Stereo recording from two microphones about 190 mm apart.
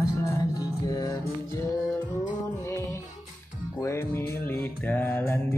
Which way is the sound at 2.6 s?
15° left (ahead or behind).